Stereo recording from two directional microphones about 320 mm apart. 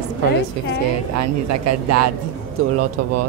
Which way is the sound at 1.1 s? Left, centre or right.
Right.